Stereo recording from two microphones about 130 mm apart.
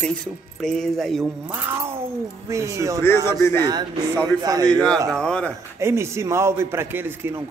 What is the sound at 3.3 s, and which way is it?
Speech, 20° left (ahead or behind).